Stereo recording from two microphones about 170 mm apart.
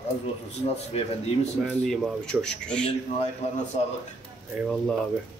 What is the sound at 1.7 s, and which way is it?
Speech, 5° left (ahead or behind).